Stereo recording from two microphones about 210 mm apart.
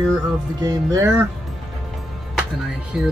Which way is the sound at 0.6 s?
15° right (ahead or behind).